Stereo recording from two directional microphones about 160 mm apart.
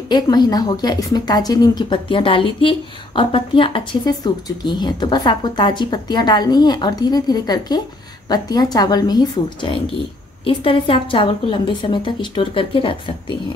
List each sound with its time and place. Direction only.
0.1 s a woman's voice: 25° left (ahead or behind)